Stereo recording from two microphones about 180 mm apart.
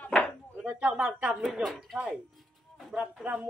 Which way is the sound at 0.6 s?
10° right (ahead or behind).